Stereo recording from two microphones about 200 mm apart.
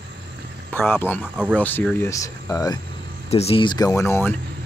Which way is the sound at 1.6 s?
5° left (ahead or behind).